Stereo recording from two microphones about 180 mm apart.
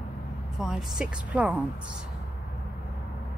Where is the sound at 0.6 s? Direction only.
5° right (ahead or behind).